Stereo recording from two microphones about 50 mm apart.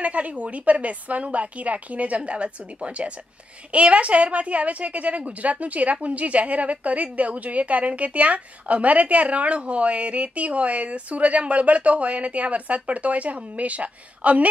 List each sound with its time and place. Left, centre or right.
0.0 s a woman's voice: right